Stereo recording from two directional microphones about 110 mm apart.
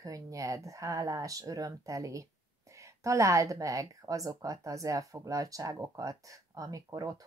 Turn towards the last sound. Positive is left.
turn(degrees=-35)  # may be behind; listen again after turning